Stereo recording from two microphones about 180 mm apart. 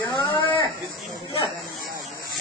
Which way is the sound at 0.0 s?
20° left (ahead or behind).